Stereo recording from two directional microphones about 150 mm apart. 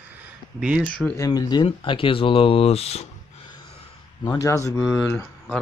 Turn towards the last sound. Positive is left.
turn(degrees=0)  # may be behind; listen again after turning